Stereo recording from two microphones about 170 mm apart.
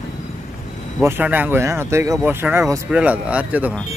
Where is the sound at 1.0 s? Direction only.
10° right (ahead or behind).